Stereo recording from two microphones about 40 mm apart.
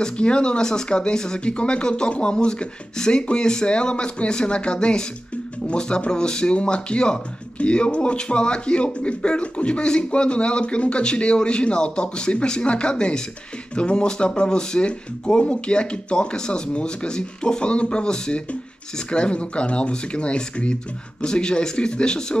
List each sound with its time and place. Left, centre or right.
0.0 s speech: left